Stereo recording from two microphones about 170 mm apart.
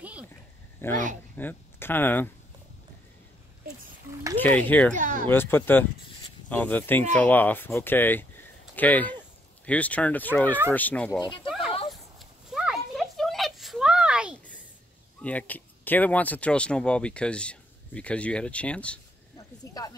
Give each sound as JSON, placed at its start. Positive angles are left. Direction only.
{"t": 0.0, "sound": "a sound", "side_deg": -10}
{"t": 0.8, "sound": "speech", "side_deg": 15}
{"t": 4.4, "sound": "speech", "side_deg": 10}
{"t": 4.9, "sound": "speech", "side_deg": -50}
{"t": 5.2, "sound": "speech", "side_deg": 10}
{"t": 11.1, "sound": "speech", "side_deg": 25}
{"t": 12.2, "sound": "a sound", "side_deg": 0}
{"t": 15.2, "sound": "speech", "side_deg": 10}
{"t": 19.3, "sound": "speech", "side_deg": 20}